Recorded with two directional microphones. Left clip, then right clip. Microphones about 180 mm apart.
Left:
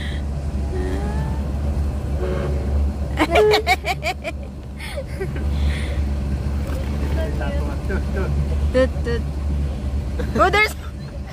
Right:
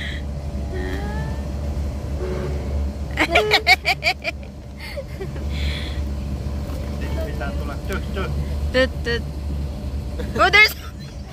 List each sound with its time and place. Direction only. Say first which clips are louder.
3.2 s vehicle: left 2 dB; 15° left (ahead or behind)
8.7 s speech: even; 5° left (ahead or behind)
10.3 s speech: right 3 dB; 15° left (ahead or behind)